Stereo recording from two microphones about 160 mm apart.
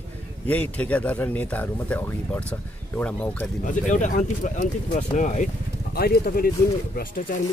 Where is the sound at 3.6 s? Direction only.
50° left (ahead or behind).